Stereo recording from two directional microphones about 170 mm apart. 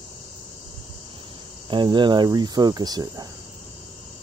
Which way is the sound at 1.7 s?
25° right (ahead or behind).